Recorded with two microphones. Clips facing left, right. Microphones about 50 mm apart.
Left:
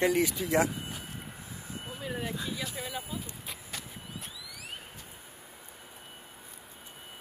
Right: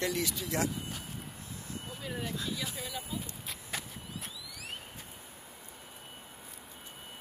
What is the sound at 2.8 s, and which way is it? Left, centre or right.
Speech, centre.